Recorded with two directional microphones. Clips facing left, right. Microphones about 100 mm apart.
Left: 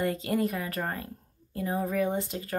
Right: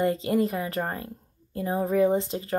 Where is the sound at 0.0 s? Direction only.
25° right (ahead or behind).